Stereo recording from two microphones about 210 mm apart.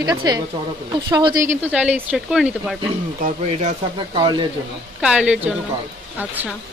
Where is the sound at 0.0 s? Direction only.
20° right (ahead or behind).